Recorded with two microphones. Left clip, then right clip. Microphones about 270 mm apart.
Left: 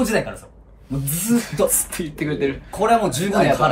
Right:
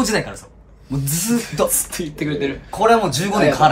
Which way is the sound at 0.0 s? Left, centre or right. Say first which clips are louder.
Right 1 dB; centre.